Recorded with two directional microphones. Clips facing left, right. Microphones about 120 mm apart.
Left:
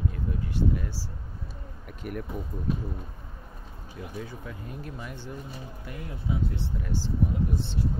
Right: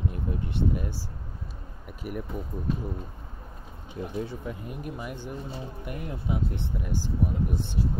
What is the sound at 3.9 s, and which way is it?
Speech, 25° right (ahead or behind).